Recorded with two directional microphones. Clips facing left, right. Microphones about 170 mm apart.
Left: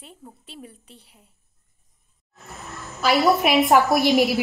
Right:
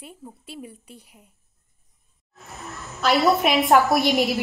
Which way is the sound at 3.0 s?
5° left (ahead or behind).